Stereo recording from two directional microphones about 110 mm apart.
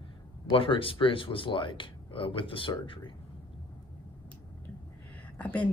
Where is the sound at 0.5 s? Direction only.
55° left (ahead or behind).